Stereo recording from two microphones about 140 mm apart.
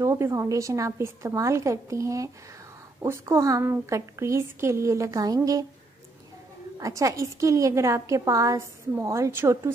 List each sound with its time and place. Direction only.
0.0 s a woman's voice: 20° right (ahead or behind)
6.8 s a woman's voice: 25° right (ahead or behind)